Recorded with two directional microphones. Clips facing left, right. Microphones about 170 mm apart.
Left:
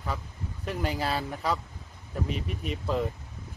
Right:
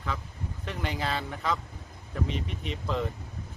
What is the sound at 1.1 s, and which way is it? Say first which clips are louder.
Speech: left 1 dB; 35° left (ahead or behind).